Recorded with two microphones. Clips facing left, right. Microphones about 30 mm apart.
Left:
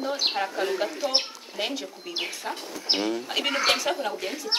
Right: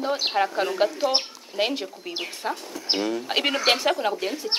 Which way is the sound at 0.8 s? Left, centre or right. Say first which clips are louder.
Right 6 dB; right.